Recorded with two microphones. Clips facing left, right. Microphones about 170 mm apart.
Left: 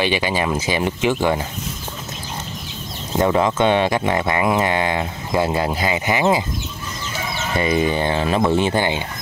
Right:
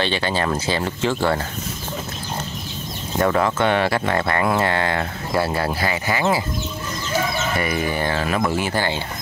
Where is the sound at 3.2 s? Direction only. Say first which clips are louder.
Left 2 dB; 15° left (ahead or behind).